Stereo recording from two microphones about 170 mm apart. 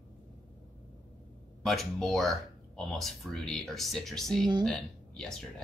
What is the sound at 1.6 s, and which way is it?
Speech, centre (ahead or behind).